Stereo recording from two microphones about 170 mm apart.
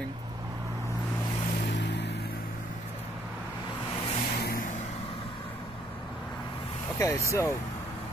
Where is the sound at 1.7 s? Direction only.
90° left.